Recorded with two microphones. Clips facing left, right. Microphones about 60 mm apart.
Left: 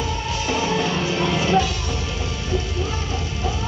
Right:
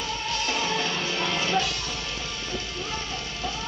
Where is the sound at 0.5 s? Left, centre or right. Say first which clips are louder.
Left 7 dB; centre.